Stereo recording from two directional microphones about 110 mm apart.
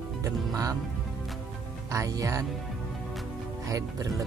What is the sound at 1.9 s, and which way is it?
Speech, 30° right (ahead or behind).